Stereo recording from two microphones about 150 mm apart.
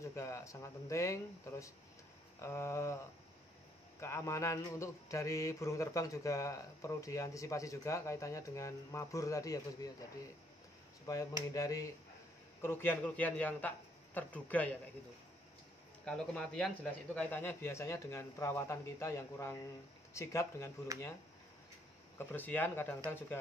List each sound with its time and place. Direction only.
0.0 s mantra: 20° left (ahead or behind)
4.0 s mantra: 20° left (ahead or behind)
11.1 s mantra: 25° left (ahead or behind)
12.6 s speech: 15° left (ahead or behind)
16.1 s speech: 5° left (ahead or behind)
20.2 s mantra: 20° left (ahead or behind)
22.3 s speech: 15° left (ahead or behind)